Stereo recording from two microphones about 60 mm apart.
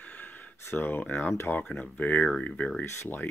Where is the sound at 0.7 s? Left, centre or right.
Left.